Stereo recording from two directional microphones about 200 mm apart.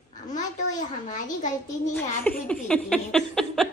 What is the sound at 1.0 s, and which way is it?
Speech, 40° left (ahead or behind).